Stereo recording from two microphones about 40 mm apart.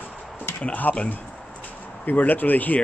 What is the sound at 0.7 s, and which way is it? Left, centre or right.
Speech, left.